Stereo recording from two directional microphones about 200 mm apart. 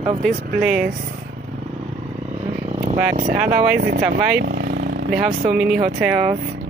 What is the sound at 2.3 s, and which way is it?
Vehicle, 30° right (ahead or behind).